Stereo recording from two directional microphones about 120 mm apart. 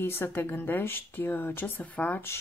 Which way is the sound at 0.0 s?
20° left (ahead or behind).